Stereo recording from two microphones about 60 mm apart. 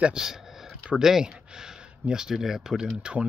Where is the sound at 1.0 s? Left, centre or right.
Centre.